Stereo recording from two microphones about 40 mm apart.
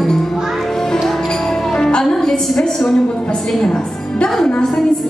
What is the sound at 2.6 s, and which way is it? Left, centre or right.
A woman's voice, centre.